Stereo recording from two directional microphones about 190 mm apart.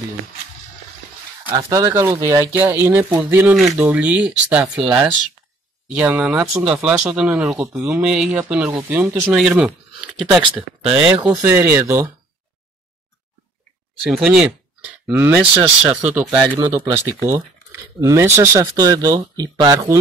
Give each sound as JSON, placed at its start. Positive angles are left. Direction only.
{"t": 1.7, "sound": "speech", "side_deg": -15}
{"t": 14.1, "sound": "speech", "side_deg": -5}
{"t": 16.5, "sound": "speech", "side_deg": -20}